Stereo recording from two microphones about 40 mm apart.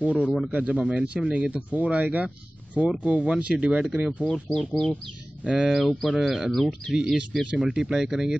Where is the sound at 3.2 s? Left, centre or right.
Right.